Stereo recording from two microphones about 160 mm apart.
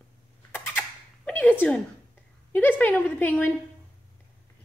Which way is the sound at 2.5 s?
10° left (ahead or behind).